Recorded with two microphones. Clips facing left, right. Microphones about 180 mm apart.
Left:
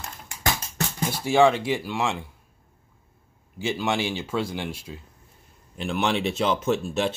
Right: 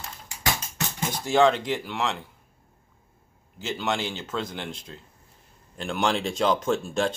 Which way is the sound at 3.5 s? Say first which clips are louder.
Left 3 dB; 15° left (ahead or behind).